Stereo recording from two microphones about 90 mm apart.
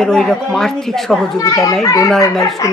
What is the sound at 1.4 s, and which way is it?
Speech, 40° left (ahead or behind).